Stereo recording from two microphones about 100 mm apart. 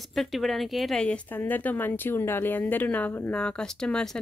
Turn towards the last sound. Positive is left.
turn(degrees=5)  # may be behind; listen again after turning